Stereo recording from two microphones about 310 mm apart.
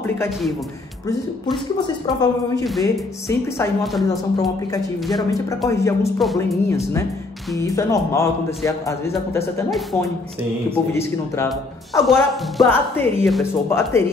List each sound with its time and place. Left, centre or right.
0.0 s a man's voice: centre
1.9 s speech: centre
5.6 s speech: centre